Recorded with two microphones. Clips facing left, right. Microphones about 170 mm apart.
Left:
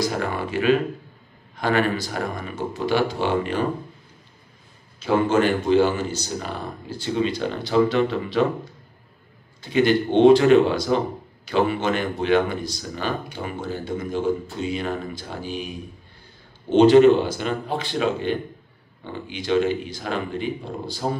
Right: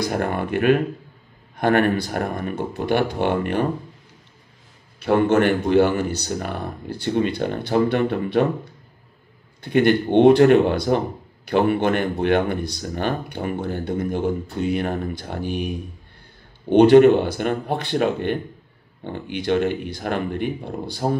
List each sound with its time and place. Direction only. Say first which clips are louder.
0.0 s speech: right 2 dB; 55° right (ahead or behind)
5.0 s speech: right 2 dB; 65° right (ahead or behind)
9.6 s speech: right 2 dB; 55° right (ahead or behind)